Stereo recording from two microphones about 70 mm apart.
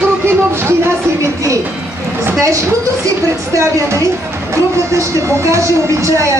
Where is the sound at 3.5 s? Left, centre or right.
Right.